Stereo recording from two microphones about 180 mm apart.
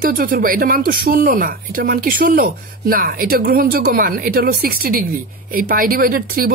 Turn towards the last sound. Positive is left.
turn(degrees=-50)  # may be behind; listen again after turning